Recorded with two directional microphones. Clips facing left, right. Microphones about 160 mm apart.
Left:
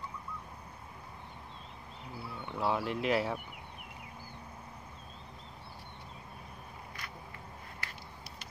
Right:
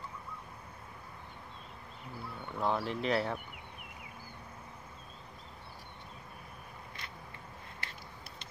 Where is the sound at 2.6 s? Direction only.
5° left (ahead or behind).